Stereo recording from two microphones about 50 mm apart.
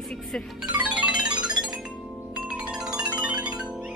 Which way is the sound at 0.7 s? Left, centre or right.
Right.